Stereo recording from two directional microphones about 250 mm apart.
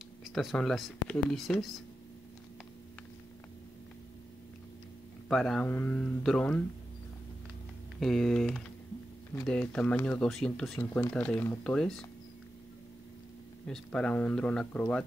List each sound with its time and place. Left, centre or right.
0.2 s speech: centre
5.3 s speech: centre
8.0 s speech: centre
13.7 s speech: centre